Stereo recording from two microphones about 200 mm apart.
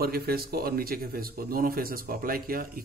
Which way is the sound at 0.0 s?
50° right (ahead or behind).